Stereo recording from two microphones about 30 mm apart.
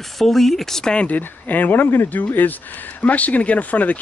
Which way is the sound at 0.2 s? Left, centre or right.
Centre.